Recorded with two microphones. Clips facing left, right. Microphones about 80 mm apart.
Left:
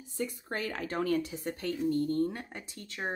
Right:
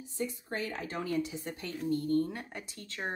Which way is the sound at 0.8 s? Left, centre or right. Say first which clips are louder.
Left 5 dB; left.